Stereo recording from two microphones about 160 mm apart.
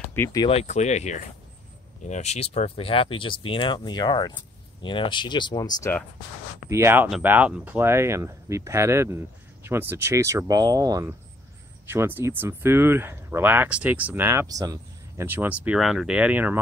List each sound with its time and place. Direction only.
0.1 s speech: 15° left (ahead or behind)
0.5 s speech: 40° left (ahead or behind); by 5.9 s 20° left (ahead or behind)
6.7 s speech: 15° right (ahead or behind)